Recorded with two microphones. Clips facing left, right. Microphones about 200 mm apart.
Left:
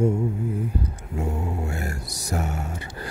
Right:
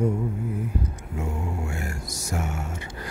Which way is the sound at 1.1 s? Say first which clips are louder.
Left 3 dB; 35° left (ahead or behind).